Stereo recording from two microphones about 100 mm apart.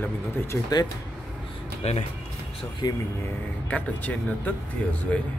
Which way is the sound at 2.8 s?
45° left (ahead or behind).